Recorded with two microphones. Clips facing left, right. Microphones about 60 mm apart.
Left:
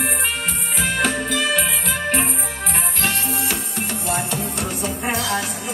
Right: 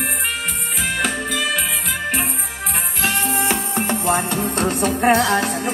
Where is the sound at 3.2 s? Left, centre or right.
Right.